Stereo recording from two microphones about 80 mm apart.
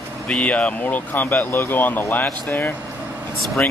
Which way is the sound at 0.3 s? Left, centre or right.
Centre.